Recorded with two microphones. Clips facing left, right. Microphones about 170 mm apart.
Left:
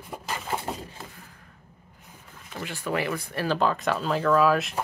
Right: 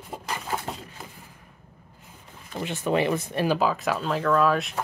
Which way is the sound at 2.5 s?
20° right (ahead or behind).